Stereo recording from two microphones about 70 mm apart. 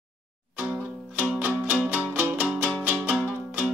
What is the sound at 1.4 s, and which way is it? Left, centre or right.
Music, right.